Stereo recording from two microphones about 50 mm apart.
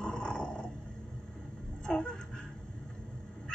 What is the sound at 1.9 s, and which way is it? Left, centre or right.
Music, centre.